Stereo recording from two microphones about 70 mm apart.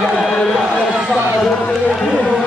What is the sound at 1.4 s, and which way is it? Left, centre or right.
Run, centre.